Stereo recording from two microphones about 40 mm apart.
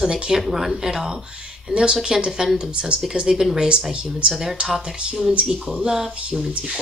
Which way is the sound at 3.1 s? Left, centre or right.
Centre.